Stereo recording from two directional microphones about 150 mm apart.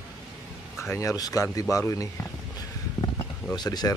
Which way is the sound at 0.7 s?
20° left (ahead or behind).